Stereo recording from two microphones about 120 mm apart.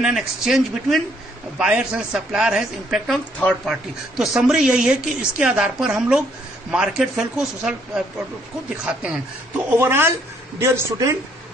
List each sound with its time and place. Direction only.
0.0 s a woman's voice: 5° right (ahead or behind)
4.2 s a woman's voice: 5° right (ahead or behind)
9.7 s a man's voice: 20° right (ahead or behind)